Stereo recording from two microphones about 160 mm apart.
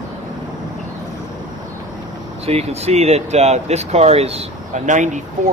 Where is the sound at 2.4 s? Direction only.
40° right (ahead or behind).